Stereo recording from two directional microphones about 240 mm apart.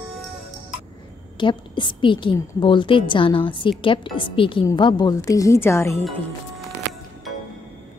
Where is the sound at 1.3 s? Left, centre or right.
Centre.